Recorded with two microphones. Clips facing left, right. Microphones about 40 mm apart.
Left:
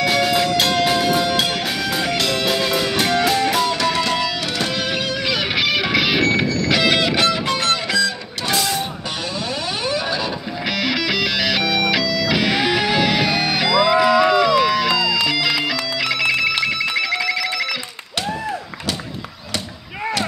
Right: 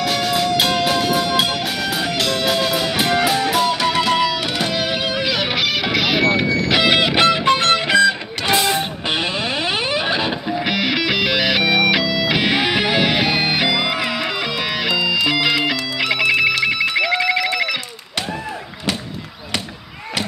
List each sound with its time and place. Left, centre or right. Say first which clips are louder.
0.0 s music: left 2 dB; centre
5.6 s music: left 1 dB; centre
6.2 s music: right 1 dB; centre
7.2 s music: right 4 dB; right
9.8 s guitar: right 2 dB; right
10.7 s music: even; centre